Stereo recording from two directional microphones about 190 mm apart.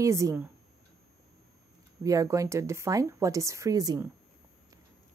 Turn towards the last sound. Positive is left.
turn(degrees=-20)  # may be behind; listen again after turning